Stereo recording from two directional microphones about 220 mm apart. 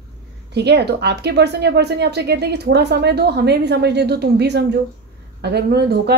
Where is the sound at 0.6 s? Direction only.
50° right (ahead or behind).